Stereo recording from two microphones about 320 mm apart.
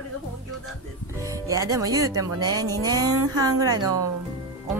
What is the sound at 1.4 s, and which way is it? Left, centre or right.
Speech, centre.